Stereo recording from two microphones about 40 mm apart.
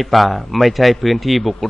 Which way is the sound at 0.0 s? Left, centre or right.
Centre.